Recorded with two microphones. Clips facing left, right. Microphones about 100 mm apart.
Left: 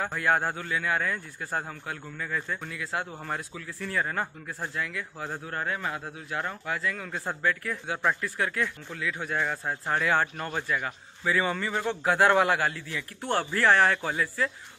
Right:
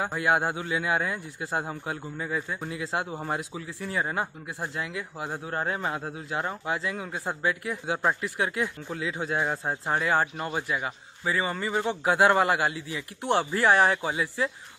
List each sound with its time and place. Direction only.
0.0 s speech: 10° right (ahead or behind)
9.9 s speech: 5° right (ahead or behind)